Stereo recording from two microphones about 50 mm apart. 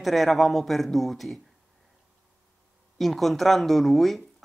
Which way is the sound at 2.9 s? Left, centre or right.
Centre.